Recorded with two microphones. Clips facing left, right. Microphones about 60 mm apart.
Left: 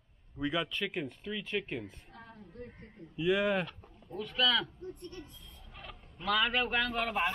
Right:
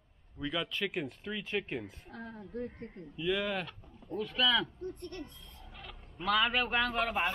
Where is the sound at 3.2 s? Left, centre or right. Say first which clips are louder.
Left 4 dB; centre.